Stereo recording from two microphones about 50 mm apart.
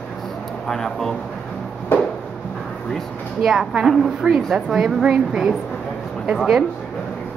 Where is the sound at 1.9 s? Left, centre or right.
Left.